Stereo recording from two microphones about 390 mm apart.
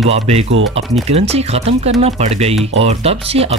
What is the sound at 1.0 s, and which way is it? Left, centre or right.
Speech, centre.